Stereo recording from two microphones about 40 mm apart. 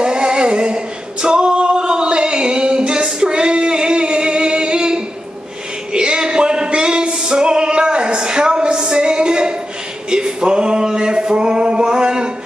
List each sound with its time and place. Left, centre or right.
0.0 s singing: right
5.9 s music: centre
10.0 s male singing: centre